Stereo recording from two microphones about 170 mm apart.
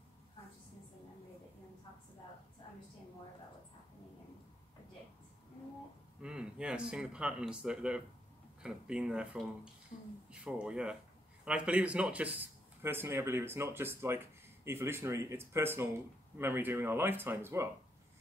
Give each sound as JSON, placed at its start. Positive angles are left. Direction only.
{"t": 6.2, "sound": "speech", "side_deg": -5}
{"t": 9.9, "sound": "speech", "side_deg": 45}
{"t": 10.3, "sound": "speech", "side_deg": -5}